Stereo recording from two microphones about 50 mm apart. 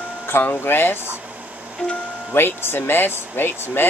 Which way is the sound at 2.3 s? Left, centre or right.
Left.